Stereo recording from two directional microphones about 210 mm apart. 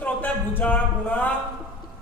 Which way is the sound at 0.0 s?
5° left (ahead or behind).